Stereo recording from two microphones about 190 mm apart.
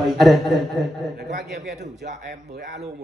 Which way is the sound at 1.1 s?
60° right (ahead or behind).